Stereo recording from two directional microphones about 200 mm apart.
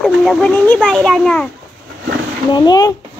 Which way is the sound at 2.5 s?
20° left (ahead or behind).